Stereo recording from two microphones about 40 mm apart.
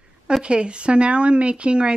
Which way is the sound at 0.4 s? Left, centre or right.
Right.